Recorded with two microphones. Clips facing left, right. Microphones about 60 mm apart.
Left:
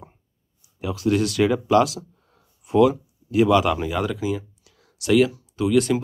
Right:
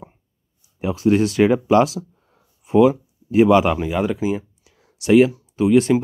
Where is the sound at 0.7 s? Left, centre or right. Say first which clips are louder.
Right 4 dB; right.